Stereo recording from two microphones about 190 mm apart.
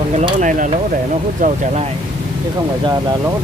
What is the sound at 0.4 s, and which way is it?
Speech, 45° right (ahead or behind).